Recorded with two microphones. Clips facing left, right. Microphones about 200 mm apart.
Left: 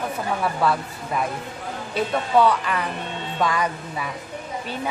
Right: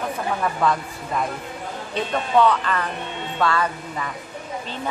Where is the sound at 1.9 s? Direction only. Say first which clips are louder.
Even; 10° left (ahead or behind).